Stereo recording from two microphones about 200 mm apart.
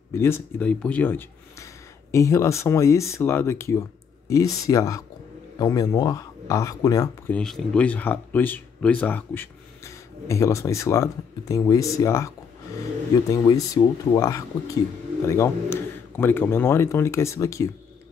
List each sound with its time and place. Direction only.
0.1 s speech: 15° left (ahead or behind)
7.3 s speech: 5° left (ahead or behind)